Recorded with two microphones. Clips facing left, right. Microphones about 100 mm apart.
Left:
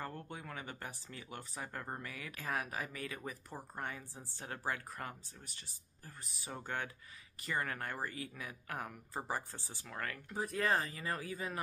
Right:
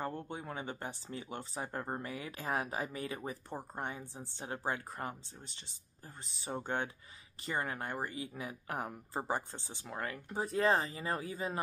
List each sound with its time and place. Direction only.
0.0 s speech: 20° right (ahead or behind)